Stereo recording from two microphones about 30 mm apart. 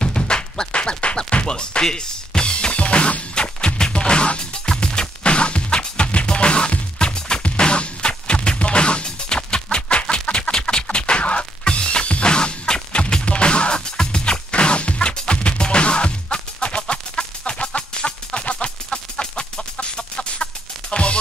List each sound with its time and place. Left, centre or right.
0.0 s music: left
10.2 s a sound: left
10.5 s music: left